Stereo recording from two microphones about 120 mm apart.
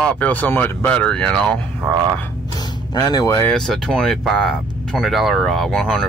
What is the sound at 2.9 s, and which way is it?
Speech, 30° left (ahead or behind).